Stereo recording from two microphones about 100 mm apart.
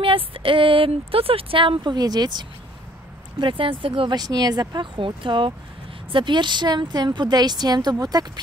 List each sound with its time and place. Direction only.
0.0 s speech: 60° right (ahead or behind); by 2.4 s 45° right (ahead or behind)
3.3 s speech: 60° right (ahead or behind)
4.1 s a woman's voice: 40° right (ahead or behind)